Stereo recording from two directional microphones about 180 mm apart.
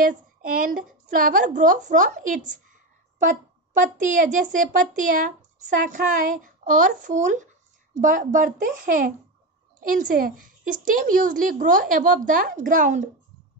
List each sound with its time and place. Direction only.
0.0 s a child's voice: 50° right (ahead or behind)
3.8 s a child's voice: 45° right (ahead or behind)